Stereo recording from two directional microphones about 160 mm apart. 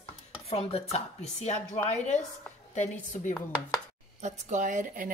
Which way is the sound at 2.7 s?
50° left (ahead or behind).